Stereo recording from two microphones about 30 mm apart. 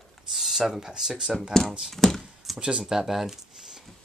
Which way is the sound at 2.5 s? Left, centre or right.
Right.